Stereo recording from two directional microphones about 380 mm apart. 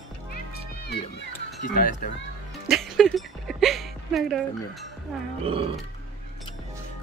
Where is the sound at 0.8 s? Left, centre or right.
Left.